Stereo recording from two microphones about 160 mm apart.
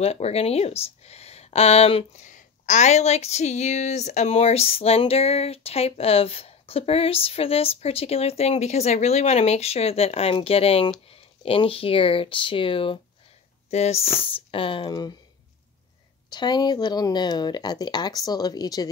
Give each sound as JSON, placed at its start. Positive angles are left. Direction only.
{"t": 0.0, "sound": "speech", "side_deg": 40}
{"t": 2.2, "sound": "speech", "side_deg": 50}
{"t": 16.3, "sound": "speech", "side_deg": 25}